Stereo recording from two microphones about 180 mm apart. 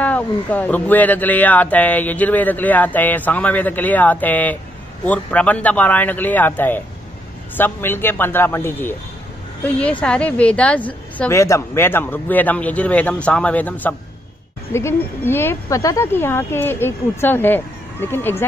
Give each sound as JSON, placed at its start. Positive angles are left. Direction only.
{"t": 0.0, "sound": "speech", "side_deg": 10}